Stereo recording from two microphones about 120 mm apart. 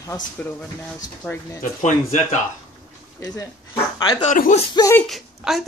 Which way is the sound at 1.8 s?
90° left.